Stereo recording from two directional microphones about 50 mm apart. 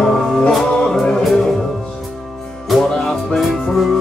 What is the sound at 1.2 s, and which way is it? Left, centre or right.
Music, centre.